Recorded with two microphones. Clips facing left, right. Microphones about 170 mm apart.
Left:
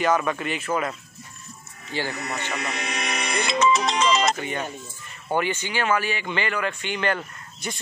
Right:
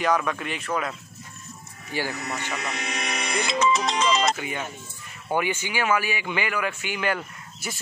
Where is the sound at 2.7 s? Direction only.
70° left (ahead or behind).